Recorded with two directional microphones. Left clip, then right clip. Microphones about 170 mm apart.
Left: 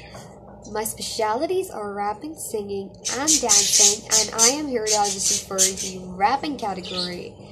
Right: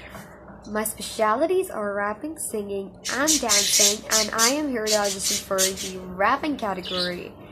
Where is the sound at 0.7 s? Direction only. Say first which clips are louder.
Left 1 dB; centre (ahead or behind).